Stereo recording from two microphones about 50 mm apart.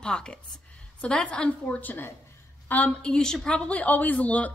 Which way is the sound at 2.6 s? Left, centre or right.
Left.